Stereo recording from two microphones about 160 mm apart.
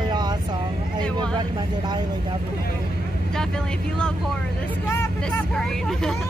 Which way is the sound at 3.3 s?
5° left (ahead or behind).